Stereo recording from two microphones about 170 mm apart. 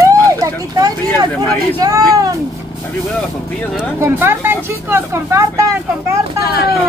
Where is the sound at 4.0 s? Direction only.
15° right (ahead or behind).